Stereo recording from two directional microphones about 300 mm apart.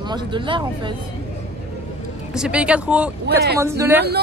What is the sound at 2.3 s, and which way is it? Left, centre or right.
Speech, centre.